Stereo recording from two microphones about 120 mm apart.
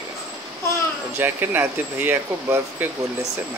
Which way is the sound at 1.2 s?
15° right (ahead or behind).